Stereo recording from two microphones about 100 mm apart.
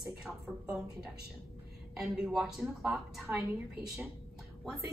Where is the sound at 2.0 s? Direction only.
5° right (ahead or behind).